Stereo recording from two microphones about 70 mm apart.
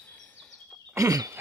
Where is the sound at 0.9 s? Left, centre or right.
Right.